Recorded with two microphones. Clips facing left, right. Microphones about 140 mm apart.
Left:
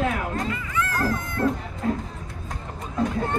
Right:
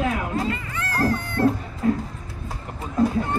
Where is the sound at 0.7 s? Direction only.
30° right (ahead or behind).